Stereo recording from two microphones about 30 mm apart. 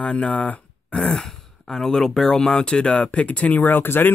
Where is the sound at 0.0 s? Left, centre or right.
Left.